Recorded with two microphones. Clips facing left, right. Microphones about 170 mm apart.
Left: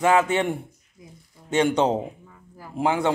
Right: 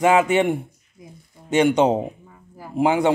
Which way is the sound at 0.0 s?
15° right (ahead or behind).